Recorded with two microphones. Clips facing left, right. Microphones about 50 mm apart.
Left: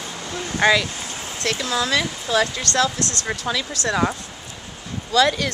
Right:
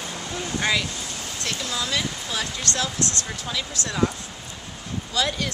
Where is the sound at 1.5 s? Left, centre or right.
Left.